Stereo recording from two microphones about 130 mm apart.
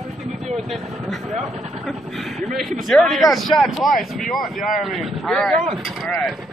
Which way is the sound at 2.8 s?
Centre (ahead or behind).